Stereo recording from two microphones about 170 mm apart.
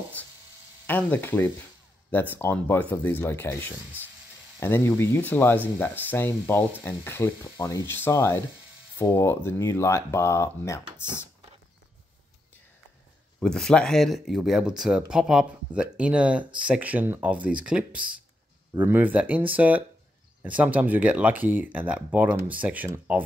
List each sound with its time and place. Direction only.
0.8 s speech: 10° left (ahead or behind)
13.4 s speech: 5° left (ahead or behind)